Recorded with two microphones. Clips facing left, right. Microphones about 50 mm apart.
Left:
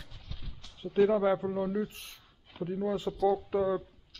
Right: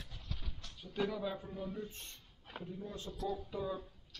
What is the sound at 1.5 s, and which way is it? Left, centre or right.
Speech, left.